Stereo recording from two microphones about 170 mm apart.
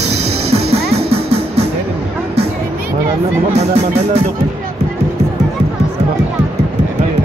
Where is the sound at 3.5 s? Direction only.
40° right (ahead or behind).